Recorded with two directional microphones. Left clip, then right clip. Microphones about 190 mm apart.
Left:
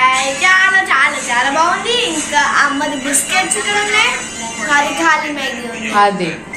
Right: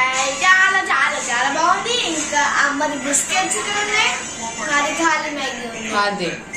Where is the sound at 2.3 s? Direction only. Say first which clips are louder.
Left 5 dB; 10° right (ahead or behind).